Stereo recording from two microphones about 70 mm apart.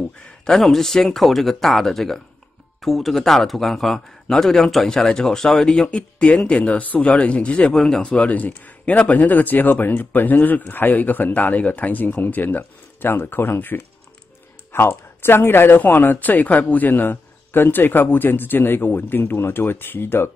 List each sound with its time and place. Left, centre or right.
0.5 s a man's voice: centre; by 20.2 s left